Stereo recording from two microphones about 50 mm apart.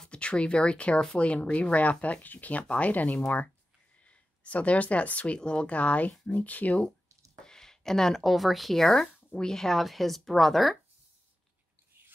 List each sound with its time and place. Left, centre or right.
0.0 s speech: left
7.4 s speech: centre